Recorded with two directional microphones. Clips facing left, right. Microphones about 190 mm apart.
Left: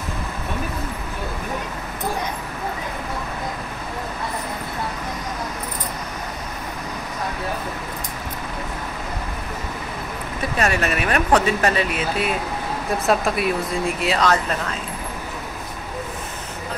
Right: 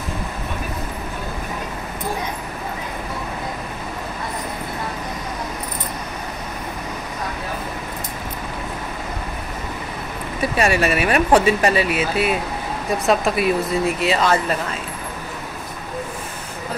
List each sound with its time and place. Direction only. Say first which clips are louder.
10.6 s speech: right 3 dB; 10° right (ahead or behind)